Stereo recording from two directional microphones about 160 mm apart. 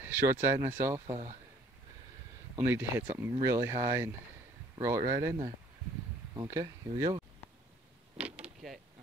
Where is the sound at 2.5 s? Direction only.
15° right (ahead or behind).